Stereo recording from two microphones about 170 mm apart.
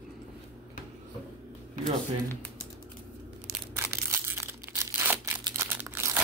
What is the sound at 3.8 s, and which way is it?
Crushing, 15° right (ahead or behind).